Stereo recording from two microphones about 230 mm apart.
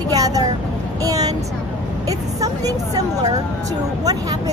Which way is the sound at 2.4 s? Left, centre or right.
Centre.